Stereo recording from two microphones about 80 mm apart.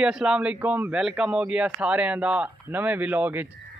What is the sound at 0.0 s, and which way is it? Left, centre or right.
Speech, centre.